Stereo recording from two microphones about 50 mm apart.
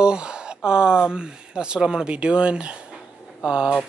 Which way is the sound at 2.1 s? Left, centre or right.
Right.